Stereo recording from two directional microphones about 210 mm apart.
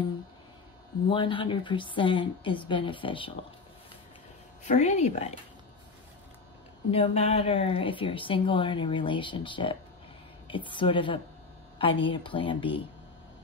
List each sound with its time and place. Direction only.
1.0 s speech: 25° left (ahead or behind)
4.6 s a woman's voice: 35° left (ahead or behind)
6.9 s speech: 30° left (ahead or behind)